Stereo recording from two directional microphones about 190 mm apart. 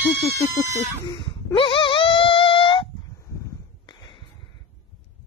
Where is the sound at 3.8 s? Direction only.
25° left (ahead or behind).